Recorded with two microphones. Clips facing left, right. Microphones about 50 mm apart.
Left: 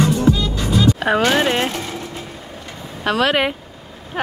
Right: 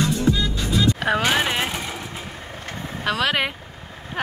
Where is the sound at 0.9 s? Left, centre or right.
Centre.